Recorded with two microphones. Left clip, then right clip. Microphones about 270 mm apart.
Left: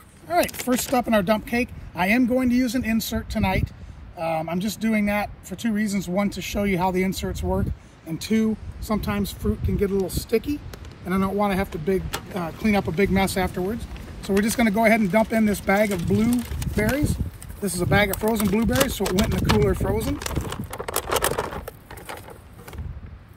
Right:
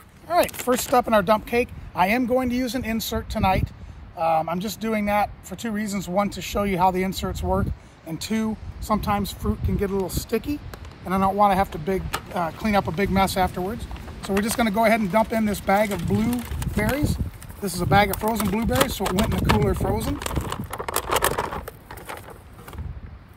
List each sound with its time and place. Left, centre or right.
0.3 s speech: centre